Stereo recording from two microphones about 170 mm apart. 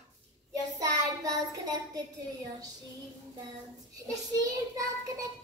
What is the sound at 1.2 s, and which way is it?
Child singing, 20° right (ahead or behind).